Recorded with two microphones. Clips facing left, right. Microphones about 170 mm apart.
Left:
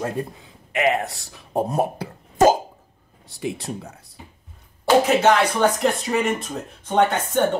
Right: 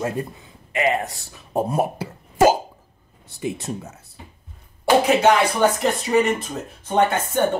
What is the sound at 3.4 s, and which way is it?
Speech, centre (ahead or behind).